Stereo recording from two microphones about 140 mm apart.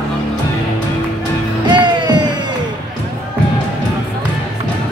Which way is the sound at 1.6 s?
30° right (ahead or behind).